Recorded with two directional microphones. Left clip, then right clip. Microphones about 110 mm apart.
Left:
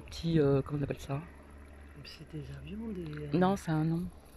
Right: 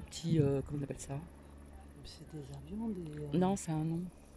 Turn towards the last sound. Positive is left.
turn(degrees=-15)  # may be behind; listen again after turning